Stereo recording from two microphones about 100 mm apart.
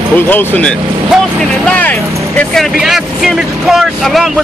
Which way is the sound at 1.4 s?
15° left (ahead or behind).